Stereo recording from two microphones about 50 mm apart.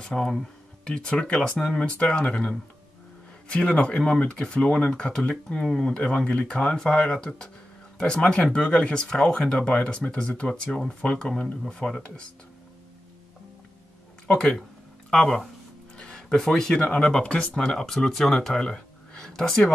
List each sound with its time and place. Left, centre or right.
0.0 s speech: centre
3.5 s speech: left
5.3 s speech: centre
5.9 s speech: centre
14.2 s speech: left
15.0 s speech: centre
16.0 s a sound: centre
16.3 s speech: centre